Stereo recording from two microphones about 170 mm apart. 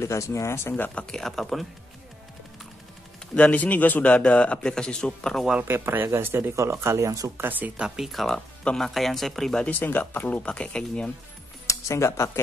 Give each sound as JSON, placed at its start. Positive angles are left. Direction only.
{"t": 0.0, "sound": "speech", "side_deg": 15}
{"t": 3.3, "sound": "a man's voice", "side_deg": 10}
{"t": 11.6, "sound": "speech", "side_deg": 15}